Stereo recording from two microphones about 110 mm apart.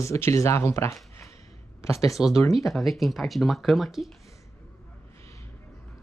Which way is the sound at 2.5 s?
Centre (ahead or behind).